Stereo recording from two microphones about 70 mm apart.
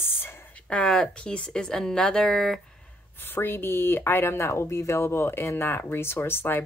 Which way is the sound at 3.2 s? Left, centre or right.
Left.